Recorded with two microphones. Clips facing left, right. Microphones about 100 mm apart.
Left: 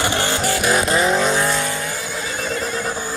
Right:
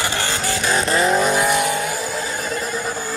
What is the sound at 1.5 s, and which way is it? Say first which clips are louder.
Vehicle: right 3 dB; 15° right (ahead or behind).